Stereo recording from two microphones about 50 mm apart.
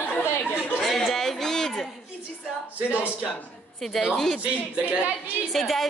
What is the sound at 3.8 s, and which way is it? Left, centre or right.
Speech, centre.